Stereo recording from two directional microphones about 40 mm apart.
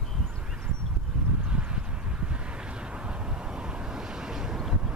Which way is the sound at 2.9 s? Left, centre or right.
Right.